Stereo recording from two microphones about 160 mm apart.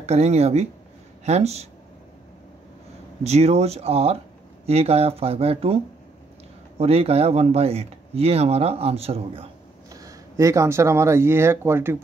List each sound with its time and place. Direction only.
0.0 s speech: 40° right (ahead or behind)
3.3 s speech: 40° right (ahead or behind)
6.8 s speech: 40° right (ahead or behind)
9.8 s speech: 20° right (ahead or behind)